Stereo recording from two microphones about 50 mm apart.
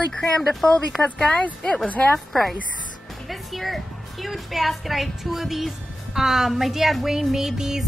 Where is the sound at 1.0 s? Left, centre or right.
Left.